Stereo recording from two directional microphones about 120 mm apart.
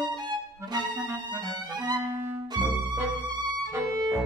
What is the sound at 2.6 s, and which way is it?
Music, 40° right (ahead or behind).